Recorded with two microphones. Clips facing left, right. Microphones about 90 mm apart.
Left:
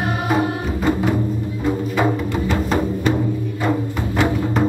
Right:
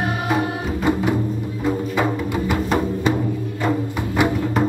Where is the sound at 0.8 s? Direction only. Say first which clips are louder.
Left 1 dB; 15° right (ahead or behind).